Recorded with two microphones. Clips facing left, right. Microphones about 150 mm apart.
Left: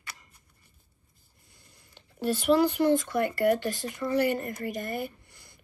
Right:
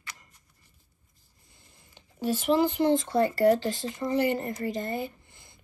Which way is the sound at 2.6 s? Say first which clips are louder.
Even; 20° right (ahead or behind).